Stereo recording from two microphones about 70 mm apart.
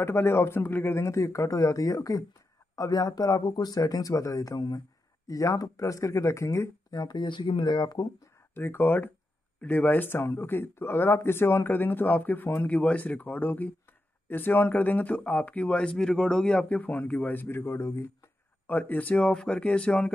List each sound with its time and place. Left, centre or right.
0.0 s a man's voice: left
6.9 s speech: left
8.5 s speech: left
18.7 s speech: left